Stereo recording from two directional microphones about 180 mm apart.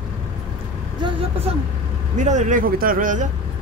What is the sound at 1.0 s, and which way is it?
Speech, 25° right (ahead or behind).